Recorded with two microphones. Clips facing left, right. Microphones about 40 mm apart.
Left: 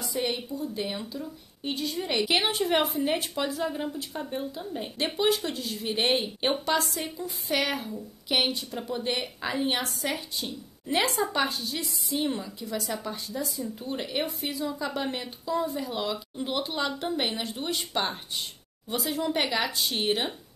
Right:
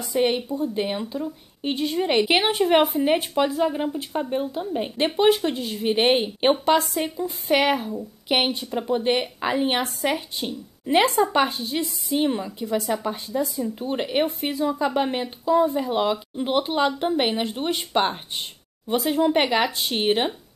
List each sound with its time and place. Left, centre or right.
0.0 s speech: right